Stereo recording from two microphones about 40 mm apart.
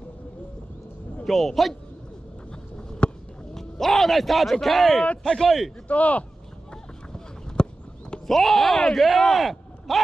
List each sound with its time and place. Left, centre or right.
1.2 s a man's voice: centre
3.0 s a sound: left
3.5 s a man's voice: centre
5.9 s speech: left
6.7 s a sound: centre
8.3 s a man's voice: centre